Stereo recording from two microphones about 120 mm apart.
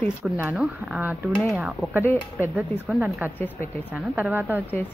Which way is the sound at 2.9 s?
10° right (ahead or behind).